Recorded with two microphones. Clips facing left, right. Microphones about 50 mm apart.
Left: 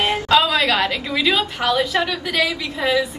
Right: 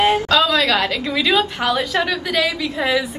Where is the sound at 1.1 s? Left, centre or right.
Centre.